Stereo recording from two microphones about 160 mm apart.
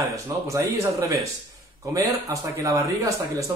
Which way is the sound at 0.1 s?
20° right (ahead or behind).